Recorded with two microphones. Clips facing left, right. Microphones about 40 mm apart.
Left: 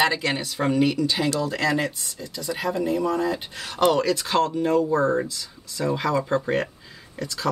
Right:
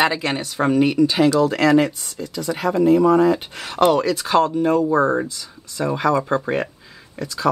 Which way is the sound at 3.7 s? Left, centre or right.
Centre.